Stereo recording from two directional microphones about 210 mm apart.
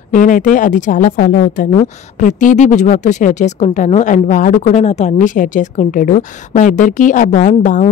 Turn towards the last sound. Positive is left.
turn(degrees=35)  # may be behind; listen again after turning